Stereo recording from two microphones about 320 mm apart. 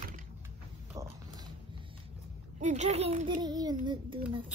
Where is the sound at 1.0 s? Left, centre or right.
Centre.